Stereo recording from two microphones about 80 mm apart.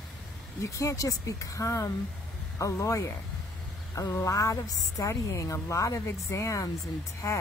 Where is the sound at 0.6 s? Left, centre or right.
Left.